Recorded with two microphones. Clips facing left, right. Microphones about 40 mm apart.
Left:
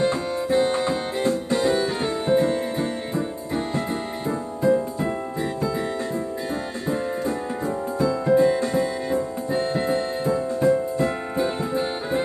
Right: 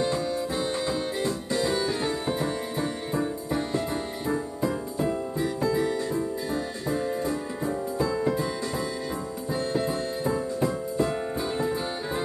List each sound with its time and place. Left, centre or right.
0.0 s music: left
4.3 s music: left
8.0 s music: centre
8.4 s music: left